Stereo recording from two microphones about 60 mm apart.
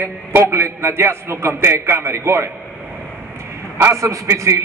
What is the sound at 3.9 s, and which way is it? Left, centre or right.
Speech, right.